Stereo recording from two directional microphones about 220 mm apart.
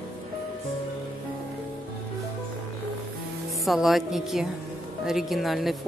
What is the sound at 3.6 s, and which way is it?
A woman's voice, centre (ahead or behind).